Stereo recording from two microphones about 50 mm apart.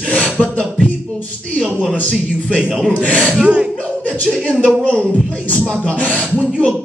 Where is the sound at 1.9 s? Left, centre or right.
Left.